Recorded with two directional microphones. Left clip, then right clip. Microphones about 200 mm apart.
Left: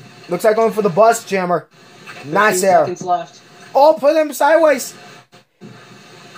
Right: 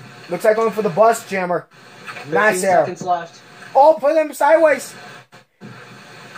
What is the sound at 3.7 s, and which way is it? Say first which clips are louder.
Speech: left 1 dB; 55° left (ahead or behind).